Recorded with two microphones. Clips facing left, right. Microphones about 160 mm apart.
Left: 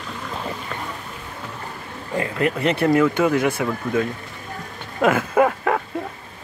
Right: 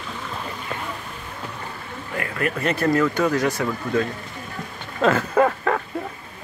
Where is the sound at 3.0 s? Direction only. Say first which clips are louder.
Left 2 dB; 10° left (ahead or behind).